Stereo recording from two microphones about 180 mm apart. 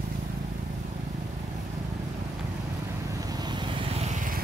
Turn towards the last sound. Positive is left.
turn(degrees=-50)  # may be behind; listen again after turning